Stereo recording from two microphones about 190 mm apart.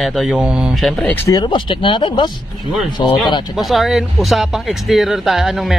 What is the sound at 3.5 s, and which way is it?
A man's voice, centre (ahead or behind).